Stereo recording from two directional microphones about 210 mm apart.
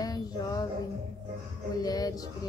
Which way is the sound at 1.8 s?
20° left (ahead or behind).